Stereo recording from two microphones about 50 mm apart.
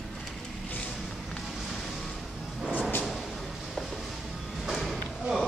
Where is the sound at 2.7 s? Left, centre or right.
Left.